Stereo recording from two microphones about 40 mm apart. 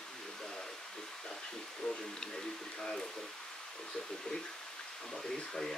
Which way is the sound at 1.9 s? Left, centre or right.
Centre.